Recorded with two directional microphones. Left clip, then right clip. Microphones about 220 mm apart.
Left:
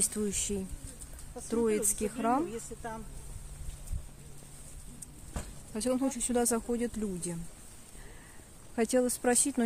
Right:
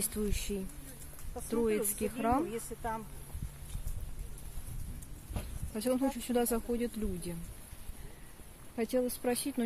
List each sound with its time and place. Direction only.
0.0 s speech: 15° left (ahead or behind)
2.5 s speech: 30° right (ahead or behind)
5.8 s speech: 5° left (ahead or behind)
8.7 s speech: 25° left (ahead or behind)